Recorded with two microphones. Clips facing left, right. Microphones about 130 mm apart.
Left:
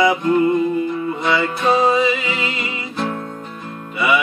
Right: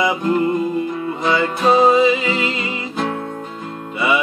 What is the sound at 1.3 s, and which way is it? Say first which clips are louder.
Music: right 2 dB; 30° right (ahead or behind).